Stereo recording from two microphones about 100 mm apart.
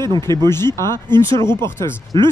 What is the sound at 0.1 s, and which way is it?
Speech, 45° right (ahead or behind).